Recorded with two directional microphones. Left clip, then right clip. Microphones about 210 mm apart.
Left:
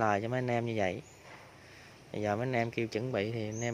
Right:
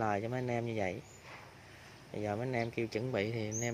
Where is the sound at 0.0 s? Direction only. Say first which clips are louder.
Left 4 dB; 25° left (ahead or behind).